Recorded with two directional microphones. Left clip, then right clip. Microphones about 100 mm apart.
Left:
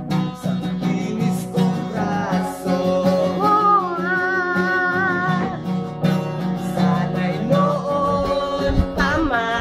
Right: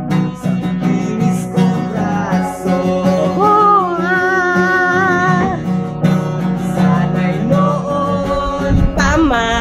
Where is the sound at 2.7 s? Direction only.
60° left (ahead or behind).